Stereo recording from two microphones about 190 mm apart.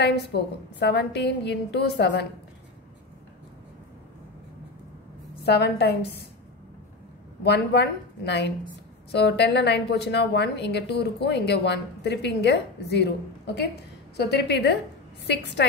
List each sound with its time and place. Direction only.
0.0 s a woman's voice: 60° left (ahead or behind)
5.4 s a woman's voice: 60° left (ahead or behind)
7.4 s a woman's voice: 65° left (ahead or behind)